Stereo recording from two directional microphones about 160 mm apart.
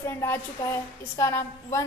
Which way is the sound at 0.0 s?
15° left (ahead or behind).